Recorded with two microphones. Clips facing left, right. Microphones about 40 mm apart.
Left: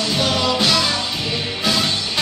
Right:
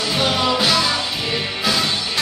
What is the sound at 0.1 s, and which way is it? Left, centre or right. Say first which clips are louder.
Music: right 2 dB; centre.